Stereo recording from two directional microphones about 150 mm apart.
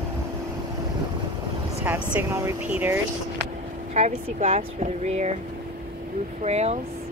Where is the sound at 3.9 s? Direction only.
50° right (ahead or behind).